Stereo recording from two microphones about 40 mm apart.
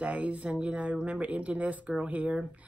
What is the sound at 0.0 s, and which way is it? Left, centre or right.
Speech, right.